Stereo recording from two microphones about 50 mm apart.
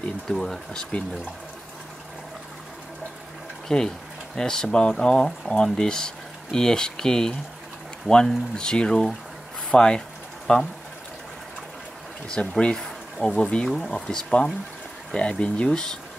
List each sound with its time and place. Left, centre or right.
0.3 s speech: centre
3.6 s speech: centre
8.5 s speech: centre
9.7 s a sound: centre
12.3 s speech: left
12.7 s speech: centre